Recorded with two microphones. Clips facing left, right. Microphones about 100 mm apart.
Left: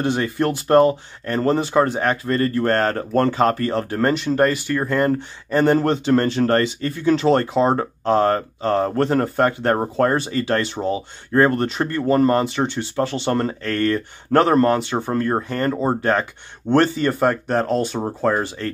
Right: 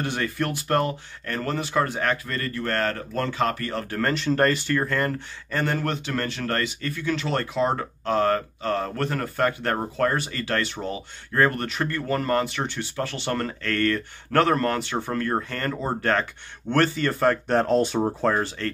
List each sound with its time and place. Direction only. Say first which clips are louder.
0.0 s speech: left 7 dB; 25° left (ahead or behind)
4.3 s speech: left 3 dB; 10° left (ahead or behind)
4.8 s speech: left 7 dB; 20° left (ahead or behind); by 18.3 s centre (ahead or behind)
18.3 s speech: left 3 dB; 15° left (ahead or behind)